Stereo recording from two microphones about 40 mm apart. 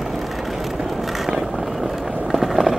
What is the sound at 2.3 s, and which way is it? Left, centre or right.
Run, centre.